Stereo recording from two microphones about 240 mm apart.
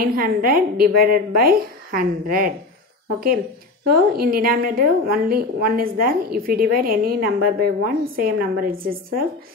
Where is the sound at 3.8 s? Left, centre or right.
Right.